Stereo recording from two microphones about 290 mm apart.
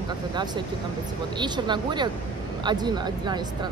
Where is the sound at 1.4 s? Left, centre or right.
Centre.